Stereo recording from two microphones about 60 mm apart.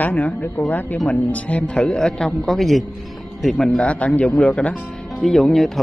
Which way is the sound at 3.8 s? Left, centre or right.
Left.